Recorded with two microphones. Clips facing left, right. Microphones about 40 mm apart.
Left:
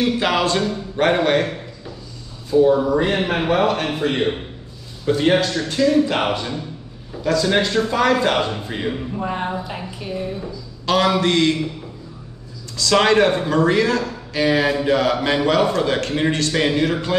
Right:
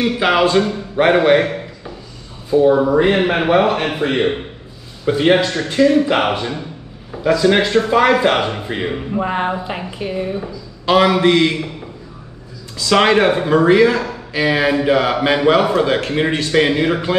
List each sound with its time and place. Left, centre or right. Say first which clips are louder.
0.0 s a man's voice: right 4 dB; centre
12.7 s a man's voice: right 2 dB; right